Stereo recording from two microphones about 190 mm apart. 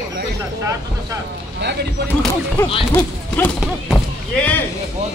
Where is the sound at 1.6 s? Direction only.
65° right (ahead or behind).